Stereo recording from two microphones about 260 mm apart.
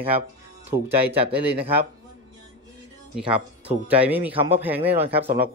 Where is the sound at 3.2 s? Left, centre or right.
Centre.